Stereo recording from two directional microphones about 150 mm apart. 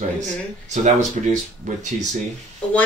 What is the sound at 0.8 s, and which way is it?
Speech, 55° right (ahead or behind).